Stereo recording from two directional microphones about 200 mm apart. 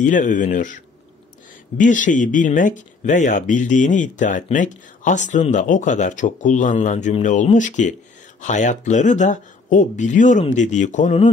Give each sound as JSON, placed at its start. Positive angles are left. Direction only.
{"t": 0.0, "sound": "speech", "side_deg": 40}